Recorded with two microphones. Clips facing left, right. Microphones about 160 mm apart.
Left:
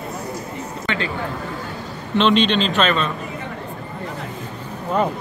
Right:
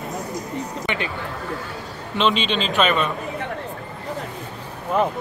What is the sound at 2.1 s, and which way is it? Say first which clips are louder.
Speech: left 5 dB; 5° right (ahead or behind).